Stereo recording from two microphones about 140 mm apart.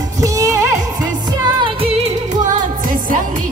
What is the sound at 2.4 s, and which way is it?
Music of asia, 70° right (ahead or behind).